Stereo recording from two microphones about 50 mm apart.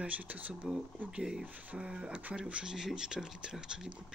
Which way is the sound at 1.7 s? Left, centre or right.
Right.